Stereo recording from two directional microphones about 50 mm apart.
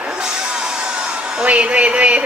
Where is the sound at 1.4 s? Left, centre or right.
Right.